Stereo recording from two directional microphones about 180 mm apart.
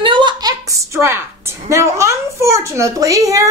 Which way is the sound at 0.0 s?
25° right (ahead or behind).